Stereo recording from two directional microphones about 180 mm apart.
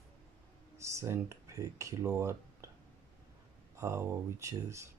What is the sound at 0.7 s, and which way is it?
Speech, 15° right (ahead or behind).